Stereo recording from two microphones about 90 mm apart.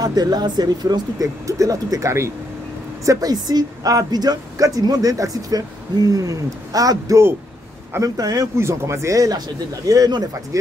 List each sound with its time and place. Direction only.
0.0 s a woman's voice: 45° right (ahead or behind)
3.1 s a woman's voice: 45° right (ahead or behind)
8.5 s a woman's voice: 30° right (ahead or behind)